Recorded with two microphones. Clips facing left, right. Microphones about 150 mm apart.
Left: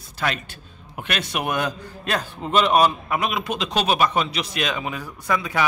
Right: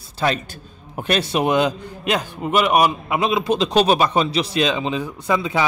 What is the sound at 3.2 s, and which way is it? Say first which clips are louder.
Speech: right 9 dB; 30° right (ahead or behind).